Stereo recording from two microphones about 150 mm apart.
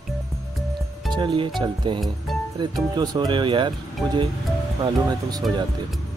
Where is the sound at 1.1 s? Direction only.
30° right (ahead or behind).